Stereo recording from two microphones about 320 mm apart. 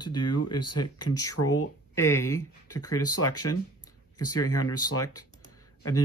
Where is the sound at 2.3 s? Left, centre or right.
Left.